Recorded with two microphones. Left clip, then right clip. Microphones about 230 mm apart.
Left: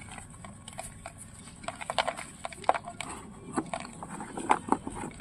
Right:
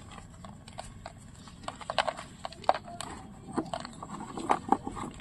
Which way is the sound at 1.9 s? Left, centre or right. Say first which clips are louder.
Even; centre.